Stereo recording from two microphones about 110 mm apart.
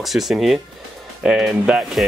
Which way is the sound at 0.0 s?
Centre (ahead or behind).